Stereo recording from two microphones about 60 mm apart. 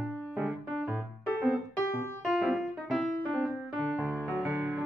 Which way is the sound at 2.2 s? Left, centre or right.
Centre.